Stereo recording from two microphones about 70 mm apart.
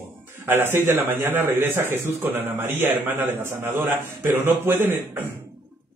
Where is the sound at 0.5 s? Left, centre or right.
Right.